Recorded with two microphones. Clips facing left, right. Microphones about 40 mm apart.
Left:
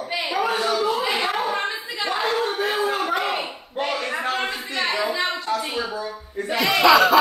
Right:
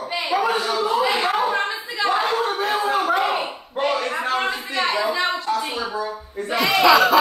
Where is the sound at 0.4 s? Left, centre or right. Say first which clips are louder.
Left 1 dB; centre.